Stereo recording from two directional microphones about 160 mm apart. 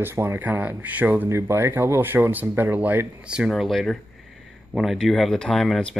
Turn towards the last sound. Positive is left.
turn(degrees=0)  # may be behind; listen again after turning